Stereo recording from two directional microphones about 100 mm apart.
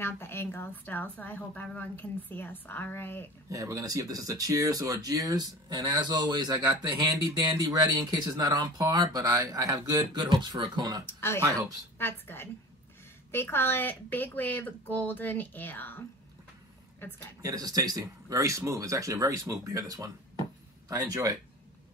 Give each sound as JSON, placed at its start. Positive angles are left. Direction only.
{"t": 0.0, "sound": "a woman's voice", "side_deg": 25}
{"t": 3.4, "sound": "speech", "side_deg": -35}
{"t": 11.1, "sound": "a woman's voice", "side_deg": 25}
{"t": 17.0, "sound": "a woman's voice", "side_deg": 20}
{"t": 17.4, "sound": "speech", "side_deg": -40}